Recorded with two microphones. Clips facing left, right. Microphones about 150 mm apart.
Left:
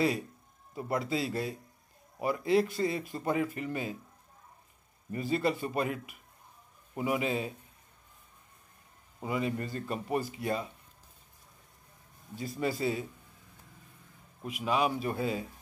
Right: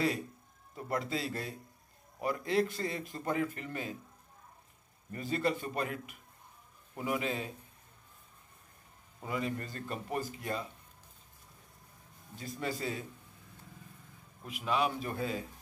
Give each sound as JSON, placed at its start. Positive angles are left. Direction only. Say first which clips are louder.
{"t": 0.7, "sound": "speech", "louder": "left 4 dB", "side_deg": 10}
{"t": 5.1, "sound": "speech", "louder": "left 3 dB", "side_deg": 10}
{"t": 9.2, "sound": "speech", "louder": "left 4 dB", "side_deg": 10}
{"t": 12.4, "sound": "speech", "louder": "left 5 dB", "side_deg": 10}
{"t": 14.4, "sound": "speech", "louder": "left 3 dB", "side_deg": 15}